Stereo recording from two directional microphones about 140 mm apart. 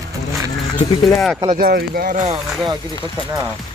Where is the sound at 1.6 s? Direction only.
90° right.